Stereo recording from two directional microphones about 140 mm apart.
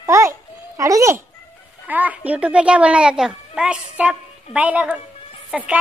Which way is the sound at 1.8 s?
10° right (ahead or behind).